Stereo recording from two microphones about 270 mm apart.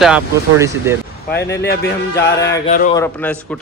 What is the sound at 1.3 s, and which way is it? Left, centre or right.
Speech, left.